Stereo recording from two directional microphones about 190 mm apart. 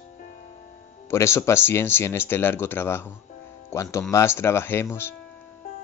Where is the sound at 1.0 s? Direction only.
15° left (ahead or behind).